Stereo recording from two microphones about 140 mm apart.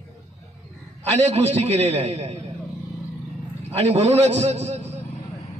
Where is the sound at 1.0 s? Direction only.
50° right (ahead or behind).